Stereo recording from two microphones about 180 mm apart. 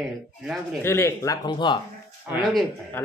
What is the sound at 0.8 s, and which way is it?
Speech, 15° left (ahead or behind).